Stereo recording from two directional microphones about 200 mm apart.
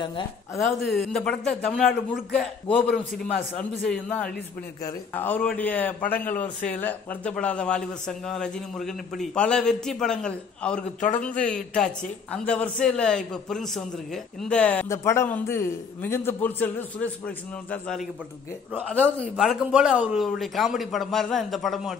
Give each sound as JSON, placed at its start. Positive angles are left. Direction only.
{"t": 0.6, "sound": "a man's voice", "side_deg": 0}
{"t": 2.9, "sound": "a man's voice", "side_deg": 45}
{"t": 3.9, "sound": "a man's voice", "side_deg": 5}
{"t": 11.0, "sound": "a man's voice", "side_deg": 40}
{"t": 11.3, "sound": "a man's voice", "side_deg": 5}
{"t": 19.3, "sound": "a man's voice", "side_deg": 0}